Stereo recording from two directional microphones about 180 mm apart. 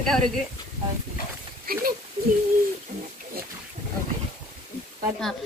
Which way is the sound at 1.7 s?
55° right (ahead or behind).